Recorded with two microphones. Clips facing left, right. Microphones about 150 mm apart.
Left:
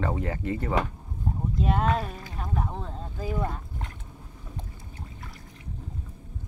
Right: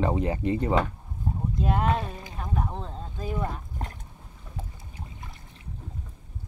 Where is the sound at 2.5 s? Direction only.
Centre (ahead or behind).